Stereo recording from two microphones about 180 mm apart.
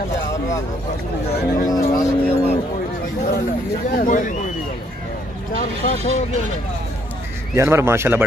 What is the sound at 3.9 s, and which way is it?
Speech, 50° left (ahead or behind).